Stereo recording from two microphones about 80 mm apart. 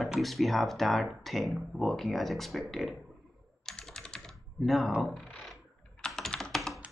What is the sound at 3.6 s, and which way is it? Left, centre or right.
Typing, centre.